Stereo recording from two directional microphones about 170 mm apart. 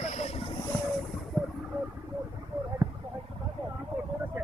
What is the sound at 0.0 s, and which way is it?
Boat, 40° left (ahead or behind).